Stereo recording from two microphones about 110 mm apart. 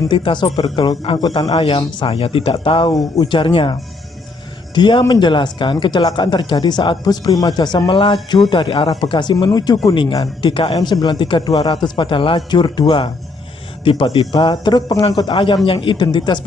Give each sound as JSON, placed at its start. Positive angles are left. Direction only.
{"t": 0.1, "sound": "speech", "side_deg": 45}
{"t": 1.5, "sound": "speech", "side_deg": 55}
{"t": 4.7, "sound": "speech", "side_deg": 45}
{"t": 14.3, "sound": "speech", "side_deg": 40}